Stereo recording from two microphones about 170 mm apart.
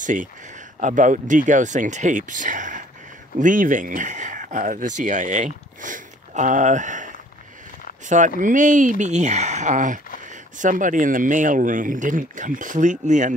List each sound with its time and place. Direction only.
0.0 s speech: 50° right (ahead or behind)